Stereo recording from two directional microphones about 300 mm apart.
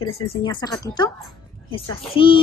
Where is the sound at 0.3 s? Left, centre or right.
Centre.